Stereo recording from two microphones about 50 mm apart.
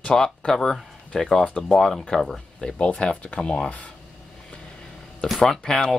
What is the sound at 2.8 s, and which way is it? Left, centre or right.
Speech, left.